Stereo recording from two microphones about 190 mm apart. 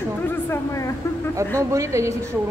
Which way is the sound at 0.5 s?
15° left (ahead or behind).